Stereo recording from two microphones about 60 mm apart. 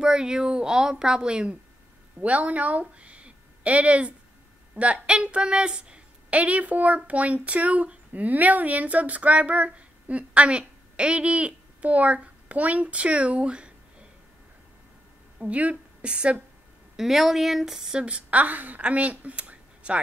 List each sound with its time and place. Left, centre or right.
0.0 s a woman's voice: centre
15.3 s a woman's voice: right
16.9 s speech: centre; by 20.0 s right